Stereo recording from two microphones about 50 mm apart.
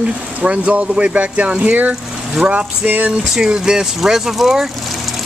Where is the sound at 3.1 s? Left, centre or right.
Centre.